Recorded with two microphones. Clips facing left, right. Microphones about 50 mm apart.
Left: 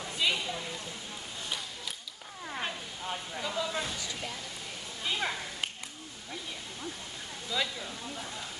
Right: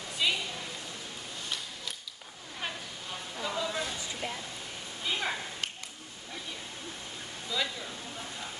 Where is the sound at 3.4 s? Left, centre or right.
Centre.